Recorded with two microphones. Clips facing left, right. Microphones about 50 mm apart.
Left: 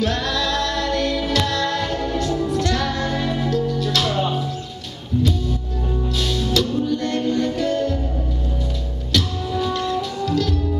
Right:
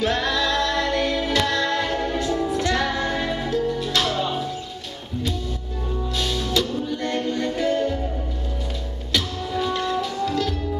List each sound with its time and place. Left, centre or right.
0.0 s music: centre
6.1 s music: centre
9.1 s music: centre